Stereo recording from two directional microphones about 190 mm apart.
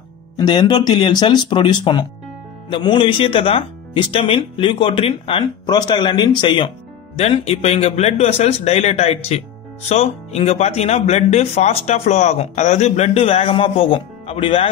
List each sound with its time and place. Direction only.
0.4 s speech: 20° left (ahead or behind)